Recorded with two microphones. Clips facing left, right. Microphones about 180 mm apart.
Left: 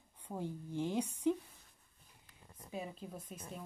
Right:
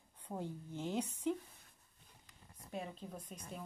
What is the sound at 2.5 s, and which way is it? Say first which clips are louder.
Speech: left 1 dB; 5° left (ahead or behind).